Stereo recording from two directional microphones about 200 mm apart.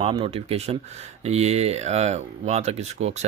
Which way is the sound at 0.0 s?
30° right (ahead or behind).